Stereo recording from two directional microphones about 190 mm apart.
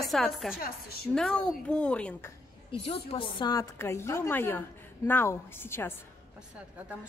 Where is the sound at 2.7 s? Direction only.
30° left (ahead or behind); by 5.9 s 10° left (ahead or behind).